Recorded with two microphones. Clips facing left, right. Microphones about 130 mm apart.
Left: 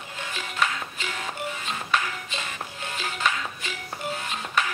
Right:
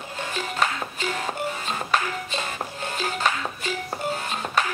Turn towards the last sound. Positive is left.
turn(degrees=-40)  # may be behind; listen again after turning